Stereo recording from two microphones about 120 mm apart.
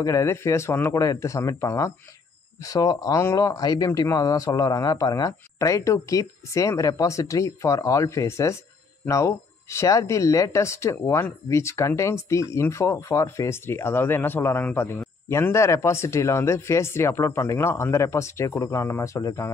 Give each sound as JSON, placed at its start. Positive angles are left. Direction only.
{"t": 0.0, "sound": "speech", "side_deg": 25}